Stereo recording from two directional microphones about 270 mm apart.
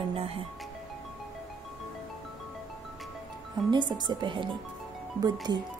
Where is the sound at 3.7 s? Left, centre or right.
Centre.